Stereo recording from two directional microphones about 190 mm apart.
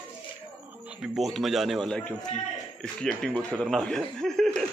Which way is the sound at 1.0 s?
Centre (ahead or behind).